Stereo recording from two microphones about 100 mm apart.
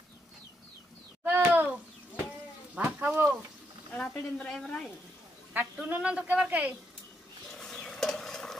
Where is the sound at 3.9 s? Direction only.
10° left (ahead or behind).